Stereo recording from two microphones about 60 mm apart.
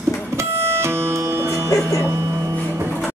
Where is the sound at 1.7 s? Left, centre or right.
Left.